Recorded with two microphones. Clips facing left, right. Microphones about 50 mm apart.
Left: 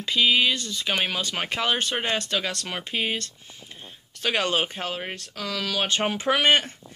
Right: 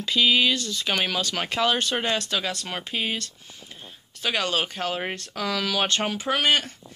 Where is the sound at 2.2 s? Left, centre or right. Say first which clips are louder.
Even; left.